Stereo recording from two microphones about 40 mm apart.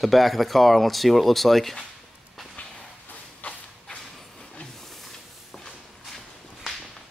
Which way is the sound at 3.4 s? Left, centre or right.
Left.